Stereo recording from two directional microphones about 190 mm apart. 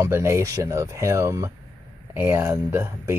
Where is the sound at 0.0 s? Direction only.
15° right (ahead or behind).